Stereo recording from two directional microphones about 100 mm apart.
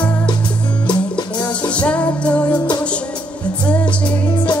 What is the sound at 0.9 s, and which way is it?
Music, 50° left (ahead or behind).